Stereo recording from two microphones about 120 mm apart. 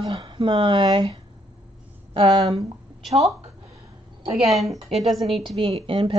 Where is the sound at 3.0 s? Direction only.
Centre (ahead or behind).